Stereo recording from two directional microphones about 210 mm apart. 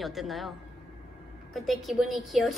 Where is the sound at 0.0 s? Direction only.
Centre (ahead or behind).